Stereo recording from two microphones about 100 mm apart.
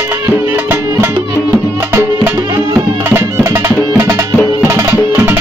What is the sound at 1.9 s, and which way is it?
Music, 30° right (ahead or behind).